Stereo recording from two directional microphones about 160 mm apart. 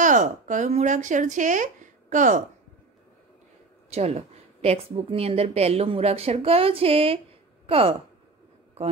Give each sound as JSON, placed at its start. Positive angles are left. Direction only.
{"t": 0.0, "sound": "speech", "side_deg": -50}
{"t": 3.9, "sound": "a woman's voice", "side_deg": -40}